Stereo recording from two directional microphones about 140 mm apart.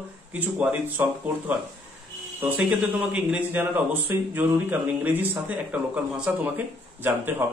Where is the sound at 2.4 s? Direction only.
10° right (ahead or behind).